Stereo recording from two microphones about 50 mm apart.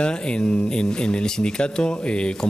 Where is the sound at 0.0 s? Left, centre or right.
Centre.